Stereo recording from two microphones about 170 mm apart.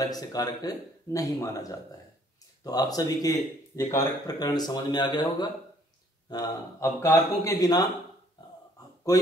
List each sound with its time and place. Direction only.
0.1 s speech: 20° left (ahead or behind)
9.1 s speech: 20° left (ahead or behind)